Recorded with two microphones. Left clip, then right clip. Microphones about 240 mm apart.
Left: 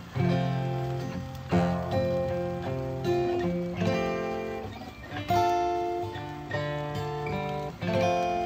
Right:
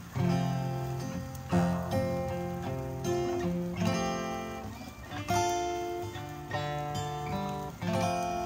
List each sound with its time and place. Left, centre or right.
0.2 s music: centre
1.5 s music: right